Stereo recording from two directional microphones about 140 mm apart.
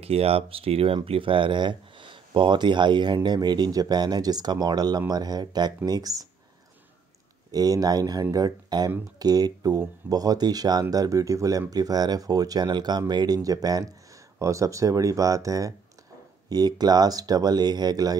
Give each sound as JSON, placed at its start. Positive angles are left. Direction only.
{"t": 0.0, "sound": "speech", "side_deg": -45}
{"t": 7.5, "sound": "speech", "side_deg": -25}